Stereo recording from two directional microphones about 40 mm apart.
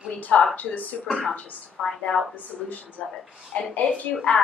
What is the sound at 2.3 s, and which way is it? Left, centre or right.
Speech, left.